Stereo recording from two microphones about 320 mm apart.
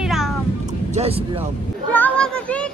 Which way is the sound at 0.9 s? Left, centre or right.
Centre.